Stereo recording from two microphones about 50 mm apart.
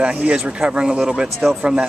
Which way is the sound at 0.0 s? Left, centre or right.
Right.